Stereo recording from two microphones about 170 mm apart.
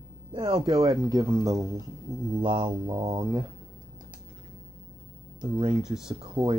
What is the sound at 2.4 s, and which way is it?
Speech, 30° right (ahead or behind).